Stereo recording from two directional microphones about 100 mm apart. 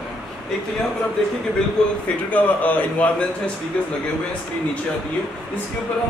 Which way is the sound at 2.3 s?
15° left (ahead or behind).